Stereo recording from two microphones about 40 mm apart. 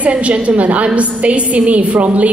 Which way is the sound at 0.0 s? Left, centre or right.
Right.